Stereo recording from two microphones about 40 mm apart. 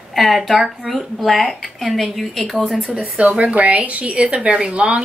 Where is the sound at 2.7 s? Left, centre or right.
Right.